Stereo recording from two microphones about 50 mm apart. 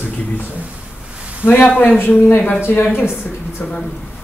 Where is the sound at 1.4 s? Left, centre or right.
Left.